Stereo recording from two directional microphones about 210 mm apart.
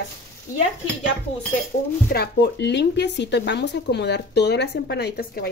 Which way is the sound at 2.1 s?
55° left (ahead or behind).